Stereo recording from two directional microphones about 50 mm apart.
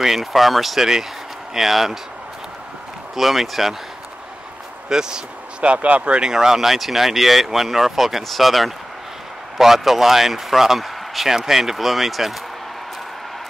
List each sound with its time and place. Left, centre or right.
0.0 s speech: centre
3.2 s speech: centre
4.8 s speech: centre
5.6 s speech: right
6.3 s speech: centre